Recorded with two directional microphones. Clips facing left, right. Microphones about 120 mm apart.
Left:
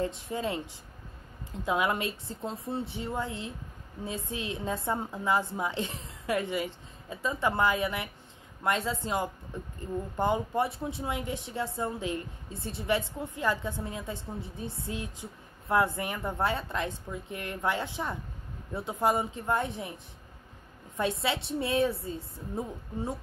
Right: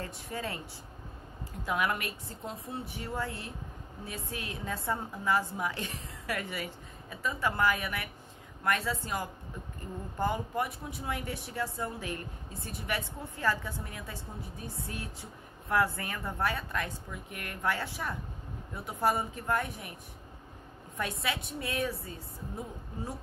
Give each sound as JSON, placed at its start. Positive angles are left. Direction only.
{"t": 0.0, "sound": "a woman's voice", "side_deg": 20}
{"t": 1.7, "sound": "a woman's voice", "side_deg": 25}
{"t": 20.9, "sound": "a woman's voice", "side_deg": 25}